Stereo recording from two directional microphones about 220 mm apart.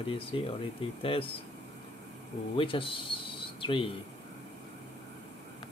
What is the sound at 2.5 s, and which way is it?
Speech, 25° left (ahead or behind).